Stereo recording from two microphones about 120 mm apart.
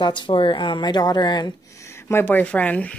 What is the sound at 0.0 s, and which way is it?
Speech, 40° left (ahead or behind).